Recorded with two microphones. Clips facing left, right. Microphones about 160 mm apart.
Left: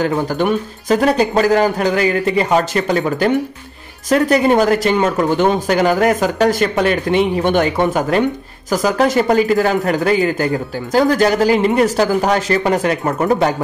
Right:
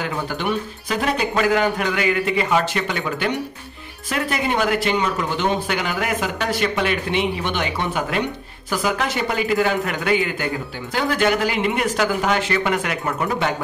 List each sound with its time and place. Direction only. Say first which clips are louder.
0.0 s speech: left 8 dB; 45° left (ahead or behind)